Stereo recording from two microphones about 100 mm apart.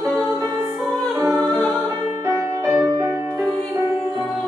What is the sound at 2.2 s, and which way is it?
Music, 25° right (ahead or behind).